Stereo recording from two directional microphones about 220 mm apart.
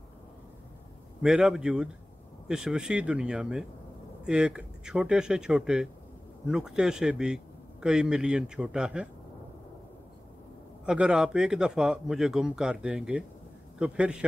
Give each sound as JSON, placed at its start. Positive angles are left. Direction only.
{"t": 1.2, "sound": "a man's voice", "side_deg": -5}
{"t": 10.9, "sound": "a man's voice", "side_deg": -5}